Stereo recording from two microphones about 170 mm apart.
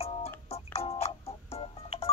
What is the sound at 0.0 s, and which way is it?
Music, 35° left (ahead or behind).